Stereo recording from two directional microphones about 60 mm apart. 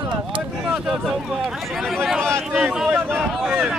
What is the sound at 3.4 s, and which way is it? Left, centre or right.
Speech, centre.